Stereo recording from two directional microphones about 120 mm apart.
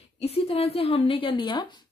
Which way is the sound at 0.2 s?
55° left (ahead or behind).